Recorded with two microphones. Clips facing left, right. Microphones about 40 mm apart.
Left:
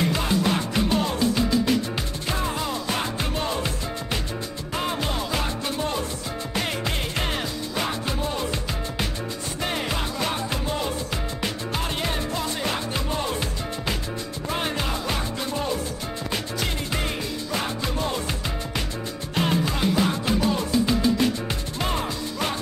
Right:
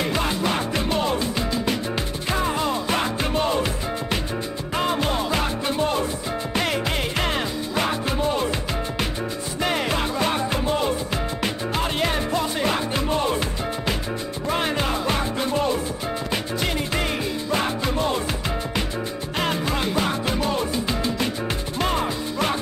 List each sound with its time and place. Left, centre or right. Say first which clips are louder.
0.0 s music: even; centre
2.3 s music: right 5 dB; right
4.7 s music: right 4 dB; centre
9.6 s music: right 5 dB; centre
14.5 s music: right 4 dB; centre
17.5 s music: right 5 dB; right
19.3 s music: even; centre